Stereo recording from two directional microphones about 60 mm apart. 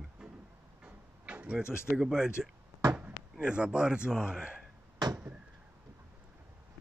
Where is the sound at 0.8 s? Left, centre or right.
Right.